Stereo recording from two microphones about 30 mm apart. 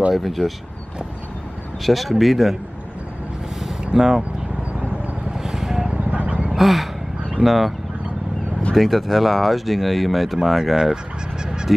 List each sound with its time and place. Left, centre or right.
0.1 s speech: centre
1.8 s speech: centre
3.9 s speech: right
5.3 s vehicle: centre
5.9 s vehicle: right
6.6 s speech: centre
8.7 s speech: centre
11.4 s goose: right